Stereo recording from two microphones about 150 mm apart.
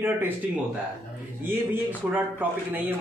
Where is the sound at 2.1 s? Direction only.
15° right (ahead or behind).